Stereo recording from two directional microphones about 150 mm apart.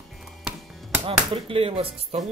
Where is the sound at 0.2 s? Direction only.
Centre (ahead or behind).